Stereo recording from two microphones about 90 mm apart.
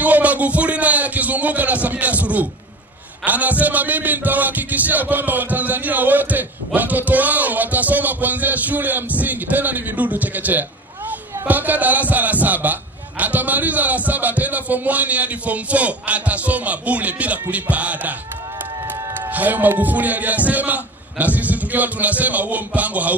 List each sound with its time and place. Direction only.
0.0 s a sound: 15° right (ahead or behind)
3.3 s music: 20° right (ahead or behind)
11.1 s a man's voice: 20° right (ahead or behind)
19.3 s music: 20° right (ahead or behind)
21.4 s a man's voice: 15° right (ahead or behind)